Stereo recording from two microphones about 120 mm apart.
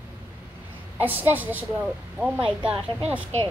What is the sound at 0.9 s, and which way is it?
A child's voice, 15° right (ahead or behind).